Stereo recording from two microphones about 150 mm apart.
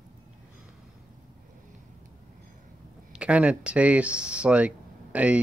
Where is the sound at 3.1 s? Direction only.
5° right (ahead or behind).